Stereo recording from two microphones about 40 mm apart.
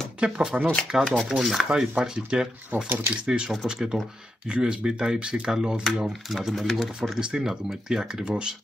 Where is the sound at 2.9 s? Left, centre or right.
Right.